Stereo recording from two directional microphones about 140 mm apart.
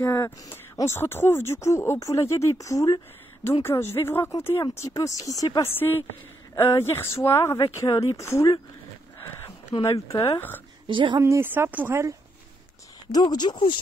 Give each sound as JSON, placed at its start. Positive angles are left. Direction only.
{"t": 0.0, "sound": "speech", "side_deg": 20}
{"t": 9.8, "sound": "speech", "side_deg": 20}
{"t": 10.9, "sound": "a woman's voice", "side_deg": -35}
{"t": 11.1, "sound": "speech", "side_deg": -20}
{"t": 13.1, "sound": "speech", "side_deg": 30}